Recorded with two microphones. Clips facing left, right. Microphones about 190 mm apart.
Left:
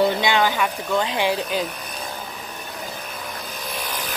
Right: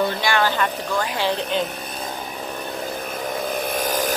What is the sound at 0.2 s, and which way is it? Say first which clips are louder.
Speech: left 1 dB; 15° left (ahead or behind).